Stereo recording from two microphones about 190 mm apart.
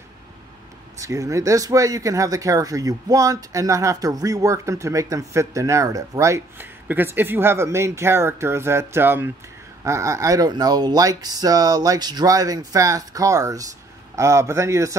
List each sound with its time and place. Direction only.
0.9 s speech: 15° right (ahead or behind)